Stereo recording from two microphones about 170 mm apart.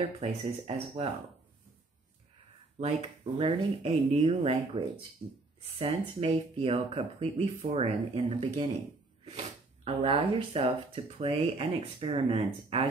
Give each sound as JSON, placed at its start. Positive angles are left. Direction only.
{"t": 0.2, "sound": "speech", "side_deg": -35}
{"t": 3.3, "sound": "speech", "side_deg": -35}